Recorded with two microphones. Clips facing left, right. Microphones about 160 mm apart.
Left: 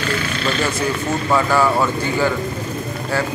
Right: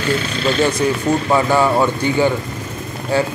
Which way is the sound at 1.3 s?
20° right (ahead or behind).